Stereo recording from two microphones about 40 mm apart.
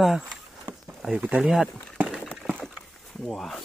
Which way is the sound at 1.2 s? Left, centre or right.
Right.